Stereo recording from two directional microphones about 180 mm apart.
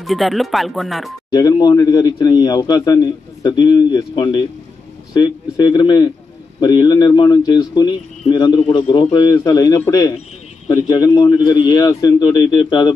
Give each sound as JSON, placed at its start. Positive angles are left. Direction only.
{"t": 0.0, "sound": "speech", "side_deg": 0}
{"t": 1.3, "sound": "a man's voice", "side_deg": 20}